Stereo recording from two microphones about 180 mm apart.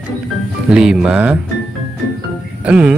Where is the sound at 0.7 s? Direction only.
5° right (ahead or behind).